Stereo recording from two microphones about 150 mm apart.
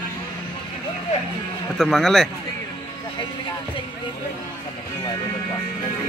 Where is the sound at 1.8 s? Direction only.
Centre (ahead or behind).